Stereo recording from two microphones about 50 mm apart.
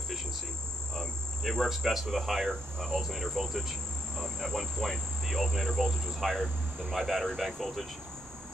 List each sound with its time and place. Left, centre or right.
0.9 s speech: centre